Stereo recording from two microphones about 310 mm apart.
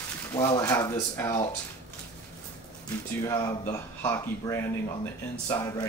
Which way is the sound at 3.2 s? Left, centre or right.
Centre.